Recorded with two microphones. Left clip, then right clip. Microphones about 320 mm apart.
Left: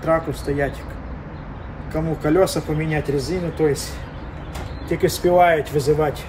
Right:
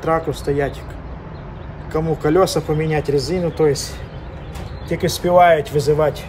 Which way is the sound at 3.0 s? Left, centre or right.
Right.